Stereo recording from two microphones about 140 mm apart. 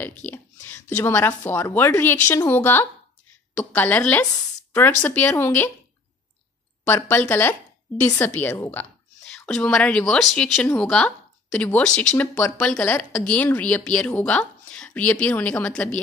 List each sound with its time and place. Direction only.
0.2 s speech: 10° left (ahead or behind)
6.9 s speech: 15° left (ahead or behind)
9.3 s speech: 5° left (ahead or behind)